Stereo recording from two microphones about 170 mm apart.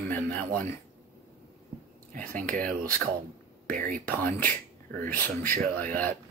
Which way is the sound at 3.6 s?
55° right (ahead or behind).